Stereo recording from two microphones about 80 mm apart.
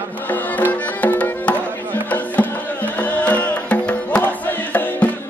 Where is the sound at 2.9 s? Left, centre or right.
Centre.